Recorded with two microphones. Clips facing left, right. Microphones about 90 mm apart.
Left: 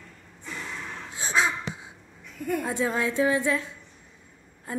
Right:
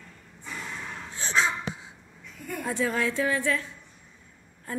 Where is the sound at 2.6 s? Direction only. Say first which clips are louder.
Right 3 dB; 20° left (ahead or behind).